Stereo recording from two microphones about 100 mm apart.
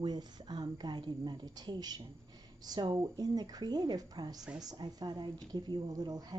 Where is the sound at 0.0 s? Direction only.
50° right (ahead or behind).